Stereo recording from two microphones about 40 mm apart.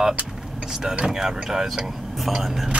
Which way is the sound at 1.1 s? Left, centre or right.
Centre.